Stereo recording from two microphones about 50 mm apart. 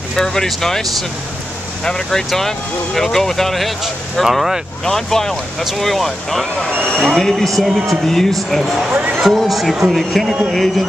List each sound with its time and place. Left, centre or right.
0.1 s speech: centre
1.9 s speech: centre
4.8 s speech: centre